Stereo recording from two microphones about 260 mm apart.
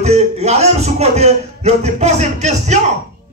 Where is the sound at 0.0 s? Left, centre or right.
Right.